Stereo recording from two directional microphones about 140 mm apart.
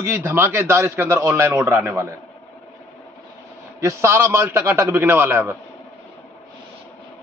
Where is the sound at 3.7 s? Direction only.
20° right (ahead or behind).